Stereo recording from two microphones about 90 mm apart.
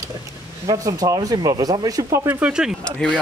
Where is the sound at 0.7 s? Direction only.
40° right (ahead or behind).